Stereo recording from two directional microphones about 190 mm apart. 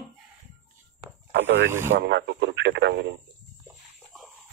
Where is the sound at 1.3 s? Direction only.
80° right.